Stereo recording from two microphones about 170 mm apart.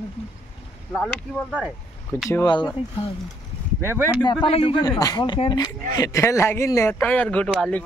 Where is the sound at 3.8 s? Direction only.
10° right (ahead or behind).